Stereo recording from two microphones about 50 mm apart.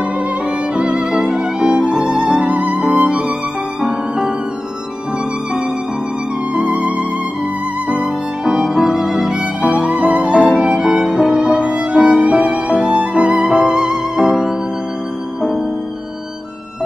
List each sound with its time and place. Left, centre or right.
0.7 s music: centre
6.5 s music: right
7.9 s music: centre
9.6 s music: right